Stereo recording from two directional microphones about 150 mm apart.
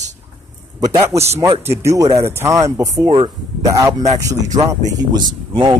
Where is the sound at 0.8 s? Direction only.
20° right (ahead or behind).